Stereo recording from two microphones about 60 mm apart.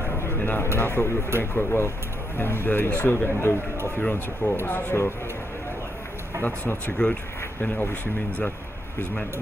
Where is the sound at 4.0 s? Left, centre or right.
Left.